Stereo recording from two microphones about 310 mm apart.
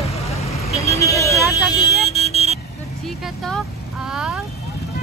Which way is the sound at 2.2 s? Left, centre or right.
Centre.